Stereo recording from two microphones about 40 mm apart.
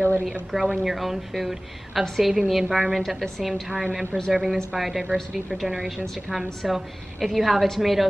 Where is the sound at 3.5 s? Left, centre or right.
Right.